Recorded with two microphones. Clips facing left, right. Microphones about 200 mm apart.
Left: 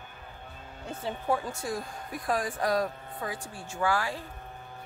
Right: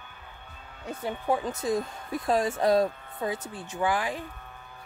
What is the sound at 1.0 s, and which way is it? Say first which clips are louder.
Speech: right 2 dB; 15° right (ahead or behind).